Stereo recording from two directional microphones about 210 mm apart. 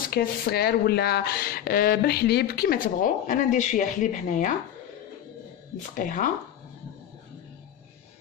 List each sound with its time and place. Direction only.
0.1 s speech: 45° left (ahead or behind)
5.8 s speech: 40° left (ahead or behind)